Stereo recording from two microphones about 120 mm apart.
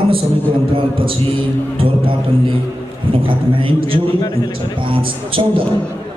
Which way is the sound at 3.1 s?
45° right (ahead or behind).